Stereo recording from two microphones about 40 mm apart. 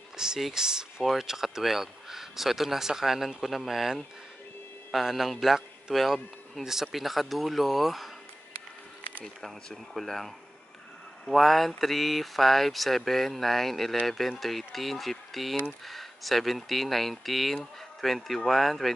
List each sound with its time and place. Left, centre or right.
0.5 s speech: centre
9.2 s speech: centre